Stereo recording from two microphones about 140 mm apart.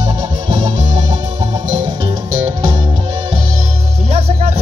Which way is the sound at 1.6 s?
65° right (ahead or behind).